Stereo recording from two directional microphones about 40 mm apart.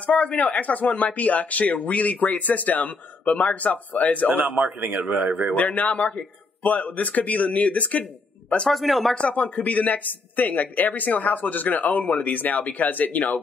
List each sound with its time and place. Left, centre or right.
0.0 s speech: left
4.3 s speech: right
4.7 s a man's voice: right
5.2 s speech: right
5.6 s speech: left
8.6 s speech: centre
9.1 s speech: left